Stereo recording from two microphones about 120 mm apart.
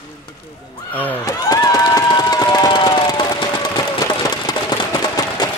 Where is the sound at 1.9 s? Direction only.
35° left (ahead or behind).